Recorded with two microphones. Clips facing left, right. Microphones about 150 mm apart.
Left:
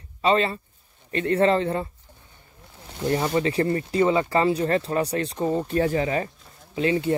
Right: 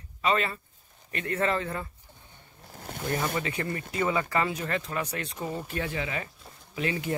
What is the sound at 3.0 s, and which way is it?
Speech, 25° left (ahead or behind).